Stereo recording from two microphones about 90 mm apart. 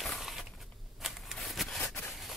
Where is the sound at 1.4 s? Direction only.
5° left (ahead or behind).